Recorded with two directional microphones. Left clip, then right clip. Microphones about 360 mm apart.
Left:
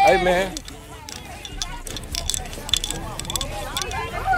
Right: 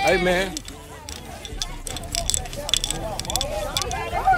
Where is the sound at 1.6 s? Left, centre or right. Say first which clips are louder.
Even; centre.